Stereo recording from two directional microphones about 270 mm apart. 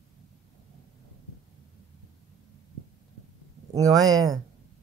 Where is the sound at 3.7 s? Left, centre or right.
Centre.